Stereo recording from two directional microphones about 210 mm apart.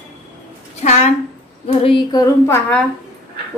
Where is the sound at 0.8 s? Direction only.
30° left (ahead or behind); by 2.8 s 10° left (ahead or behind).